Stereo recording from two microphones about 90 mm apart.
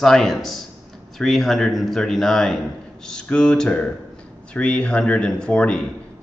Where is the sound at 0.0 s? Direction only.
5° left (ahead or behind).